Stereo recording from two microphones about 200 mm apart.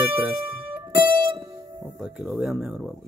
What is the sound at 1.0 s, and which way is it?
Music, 20° right (ahead or behind).